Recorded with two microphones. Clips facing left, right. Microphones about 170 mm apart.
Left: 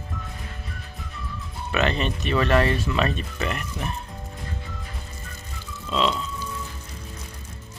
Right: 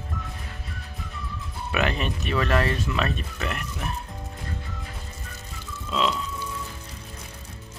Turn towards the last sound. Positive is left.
turn(degrees=-5)  # may be behind; listen again after turning